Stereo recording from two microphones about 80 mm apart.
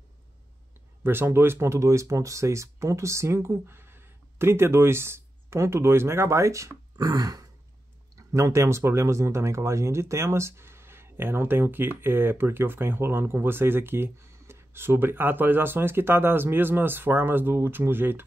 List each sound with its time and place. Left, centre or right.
1.0 s speech: right
7.0 s throat clearing: right
8.2 s speech: right